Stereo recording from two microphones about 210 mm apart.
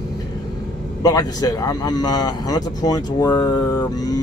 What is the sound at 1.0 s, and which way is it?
Speech, 15° left (ahead or behind).